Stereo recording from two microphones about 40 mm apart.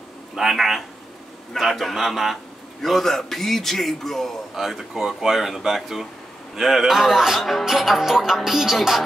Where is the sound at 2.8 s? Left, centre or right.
Centre.